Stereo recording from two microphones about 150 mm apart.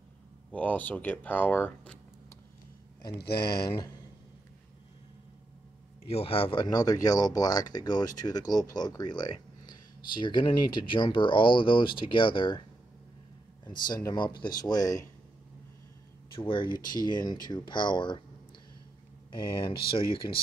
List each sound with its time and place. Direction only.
0.5 s speech: 10° left (ahead or behind)
3.1 s speech: 90° left
3.5 s speech: 25° left (ahead or behind)
6.0 s speech: 40° left (ahead or behind)
13.7 s speech: 30° left (ahead or behind)
16.3 s speech: 35° left (ahead or behind)
19.3 s speech: 35° left (ahead or behind)